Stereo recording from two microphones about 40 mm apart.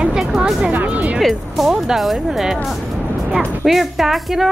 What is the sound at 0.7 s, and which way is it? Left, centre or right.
Speech, right.